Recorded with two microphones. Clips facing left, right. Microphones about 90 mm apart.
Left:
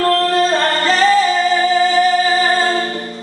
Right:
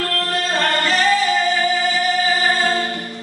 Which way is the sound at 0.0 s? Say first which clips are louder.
Left 9 dB; 35° left (ahead or behind).